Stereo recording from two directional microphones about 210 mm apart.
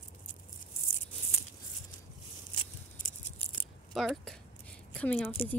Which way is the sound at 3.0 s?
40° left (ahead or behind).